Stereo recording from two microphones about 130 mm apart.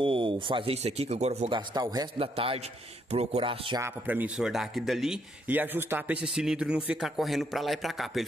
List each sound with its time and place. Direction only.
0.0 s speech: 40° right (ahead or behind); by 1.5 s 60° right (ahead or behind)
1.5 s a man's voice: 35° right (ahead or behind)
2.1 s speech: 45° right (ahead or behind)
4.0 s speech: 10° right (ahead or behind)
5.5 s speech: 15° right (ahead or behind)